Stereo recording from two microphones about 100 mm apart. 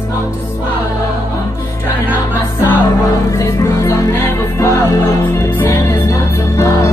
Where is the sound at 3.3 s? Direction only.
30° left (ahead or behind).